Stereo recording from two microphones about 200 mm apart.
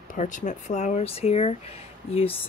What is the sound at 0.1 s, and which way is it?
Speech, 40° left (ahead or behind).